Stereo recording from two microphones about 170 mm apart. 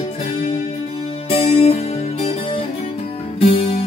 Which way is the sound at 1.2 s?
35° left (ahead or behind).